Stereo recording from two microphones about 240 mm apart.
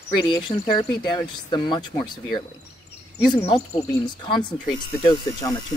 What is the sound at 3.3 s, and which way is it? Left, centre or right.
Speech, centre.